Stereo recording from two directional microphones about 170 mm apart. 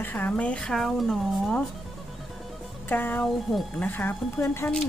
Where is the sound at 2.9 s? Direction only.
10° left (ahead or behind).